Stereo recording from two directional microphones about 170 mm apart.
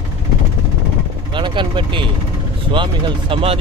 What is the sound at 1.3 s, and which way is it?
Speech, 30° right (ahead or behind).